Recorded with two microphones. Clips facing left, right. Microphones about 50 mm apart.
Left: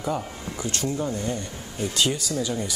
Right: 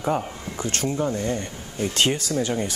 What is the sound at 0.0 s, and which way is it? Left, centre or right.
Speech, right.